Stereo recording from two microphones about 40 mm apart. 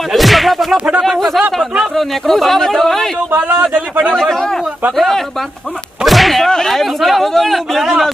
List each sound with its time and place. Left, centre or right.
0.1 s a sound: centre
0.7 s speech: right
2.0 s speech: centre
3.7 s a man's voice: right
4.2 s speech: centre
6.0 s whip: centre
6.5 s speech: centre